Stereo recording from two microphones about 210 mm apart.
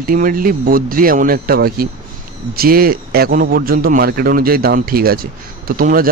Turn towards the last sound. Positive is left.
turn(degrees=-40)  # may be behind; listen again after turning